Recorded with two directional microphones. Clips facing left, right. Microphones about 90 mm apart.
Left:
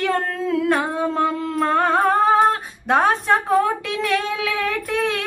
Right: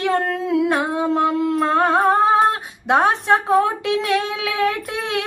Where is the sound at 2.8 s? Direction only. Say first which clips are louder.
Right 1 dB; 20° right (ahead or behind).